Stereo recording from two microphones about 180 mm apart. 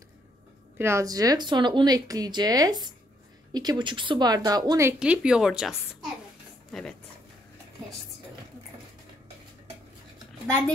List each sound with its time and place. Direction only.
0.7 s speech: 15° right (ahead or behind)
4.9 s a woman's voice: 5° right (ahead or behind)